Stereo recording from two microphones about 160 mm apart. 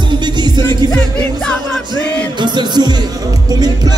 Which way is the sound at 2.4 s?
30° right (ahead or behind).